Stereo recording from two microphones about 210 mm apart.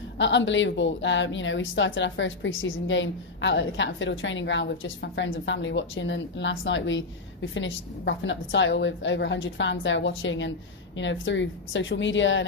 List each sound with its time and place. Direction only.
0.2 s a woman's voice: 60° left (ahead or behind)